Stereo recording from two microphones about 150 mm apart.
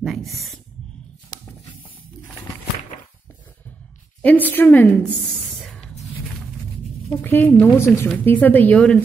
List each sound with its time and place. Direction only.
0.0 s speech: centre (ahead or behind)
1.3 s a sound: 25° left (ahead or behind)
4.2 s a woman's voice: 10° left (ahead or behind)
5.6 s music: centre (ahead or behind)
7.1 s a woman's voice: 15° left (ahead or behind)